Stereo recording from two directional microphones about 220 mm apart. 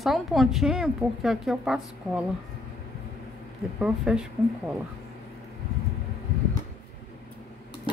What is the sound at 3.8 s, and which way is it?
Speech, 5° right (ahead or behind).